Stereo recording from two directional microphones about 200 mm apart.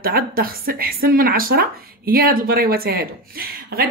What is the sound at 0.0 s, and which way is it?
Speech, 45° right (ahead or behind).